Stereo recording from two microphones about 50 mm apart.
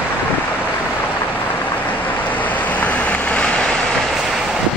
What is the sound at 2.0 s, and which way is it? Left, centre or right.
Vehicle, left.